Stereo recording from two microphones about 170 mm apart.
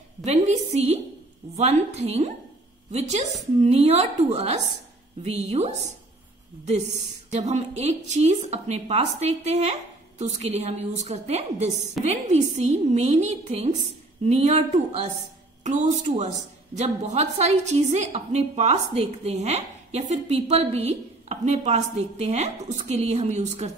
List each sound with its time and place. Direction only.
0.2 s a woman's voice: 40° right (ahead or behind)
7.2 s a woman's voice: 40° right (ahead or behind)